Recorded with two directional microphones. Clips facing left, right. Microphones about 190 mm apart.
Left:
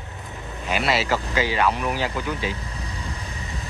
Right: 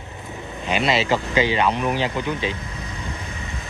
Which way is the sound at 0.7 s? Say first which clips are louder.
Right 2 dB; 20° right (ahead or behind).